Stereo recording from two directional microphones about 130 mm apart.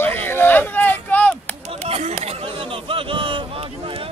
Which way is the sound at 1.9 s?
55° right (ahead or behind).